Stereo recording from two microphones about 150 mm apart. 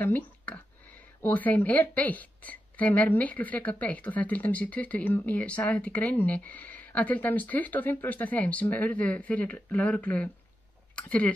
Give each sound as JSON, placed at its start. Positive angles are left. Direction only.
{"t": 0.0, "sound": "speech", "side_deg": 10}